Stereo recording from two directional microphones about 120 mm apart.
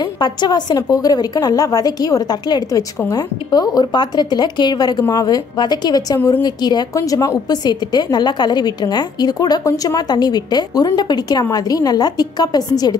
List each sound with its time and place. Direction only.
0.2 s a woman's voice: 35° left (ahead or behind)
6.1 s a woman's voice: 20° left (ahead or behind)
6.4 s a woman's voice: 35° left (ahead or behind)